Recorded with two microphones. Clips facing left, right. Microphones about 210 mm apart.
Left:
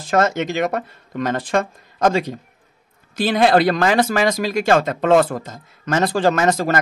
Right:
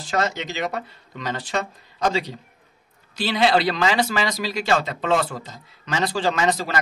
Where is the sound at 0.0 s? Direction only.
50° left (ahead or behind).